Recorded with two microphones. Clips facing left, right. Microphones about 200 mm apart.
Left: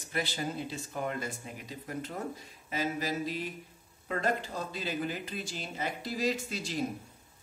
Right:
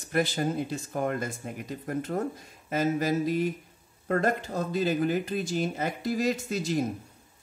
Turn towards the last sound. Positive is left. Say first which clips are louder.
# right 7 dB
turn(degrees=-50)  # may be behind; listen again after turning